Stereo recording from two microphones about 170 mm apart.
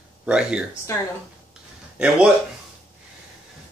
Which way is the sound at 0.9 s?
15° left (ahead or behind).